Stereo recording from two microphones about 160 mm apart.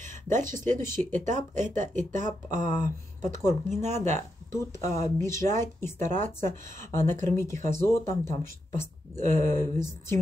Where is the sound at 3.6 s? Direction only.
45° right (ahead or behind).